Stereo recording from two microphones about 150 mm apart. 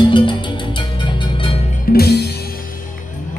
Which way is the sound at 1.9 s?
70° left (ahead or behind).